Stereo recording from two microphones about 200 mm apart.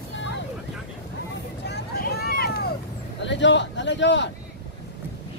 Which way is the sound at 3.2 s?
65° left (ahead or behind).